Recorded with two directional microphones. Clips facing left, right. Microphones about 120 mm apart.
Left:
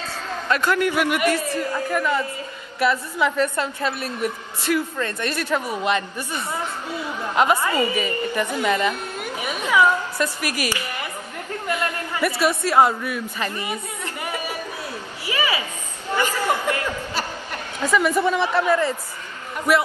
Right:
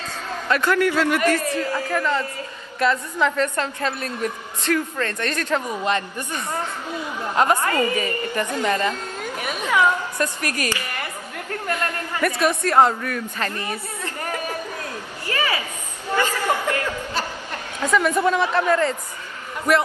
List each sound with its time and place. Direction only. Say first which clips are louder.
0.5 s a woman's voice: right 1 dB; 15° left (ahead or behind)
1.6 s a woman's voice: even; 5° left (ahead or behind)
16.1 s a sound: even; 15° left (ahead or behind)
17.8 s a woman's voice: even; 5° left (ahead or behind)